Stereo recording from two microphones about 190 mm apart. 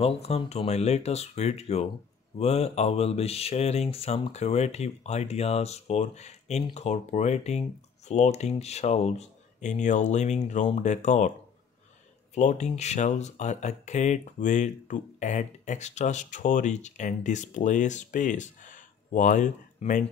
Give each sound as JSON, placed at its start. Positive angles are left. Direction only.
{"t": 0.0, "sound": "speech", "side_deg": 30}
{"t": 12.4, "sound": "speech", "side_deg": 35}